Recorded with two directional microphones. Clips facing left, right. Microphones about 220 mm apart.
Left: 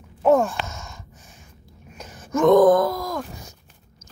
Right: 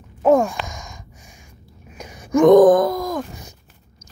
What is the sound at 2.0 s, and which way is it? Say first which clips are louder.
Wail: right 6 dB; 10° right (ahead or behind).